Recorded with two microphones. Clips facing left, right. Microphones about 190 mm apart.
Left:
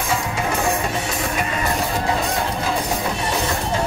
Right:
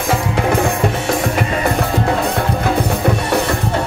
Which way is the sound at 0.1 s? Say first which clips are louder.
Right 7 dB; 55° right (ahead or behind).